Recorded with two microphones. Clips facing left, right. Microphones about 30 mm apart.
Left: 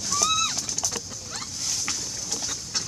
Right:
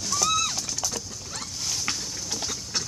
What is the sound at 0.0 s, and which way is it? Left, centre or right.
Bird, centre.